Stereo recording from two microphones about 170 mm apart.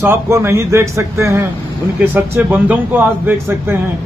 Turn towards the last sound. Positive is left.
turn(degrees=-10)  # may be behind; listen again after turning